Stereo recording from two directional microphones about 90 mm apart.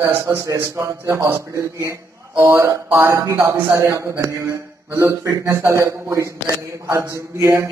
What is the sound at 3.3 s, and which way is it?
A man's voice, 25° right (ahead or behind).